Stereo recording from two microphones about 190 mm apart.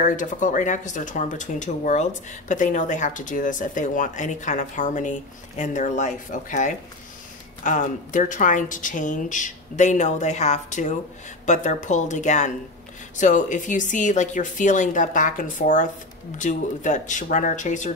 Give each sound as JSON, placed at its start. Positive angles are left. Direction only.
{"t": 0.0, "sound": "speech", "side_deg": 40}